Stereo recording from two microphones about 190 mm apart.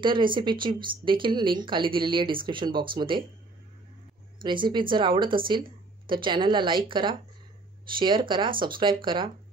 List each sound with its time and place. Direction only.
0.0 s speech: 25° right (ahead or behind)
4.4 s speech: 25° right (ahead or behind)